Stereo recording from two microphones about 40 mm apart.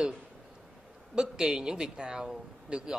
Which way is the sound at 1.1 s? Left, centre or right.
Centre.